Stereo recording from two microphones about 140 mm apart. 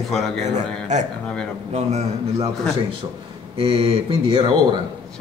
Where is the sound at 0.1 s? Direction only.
5° left (ahead or behind).